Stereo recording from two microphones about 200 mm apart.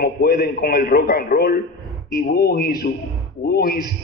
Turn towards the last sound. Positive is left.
turn(degrees=50)  # may be behind; listen again after turning